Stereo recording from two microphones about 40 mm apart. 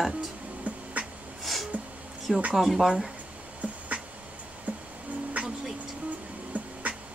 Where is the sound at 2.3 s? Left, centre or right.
Centre.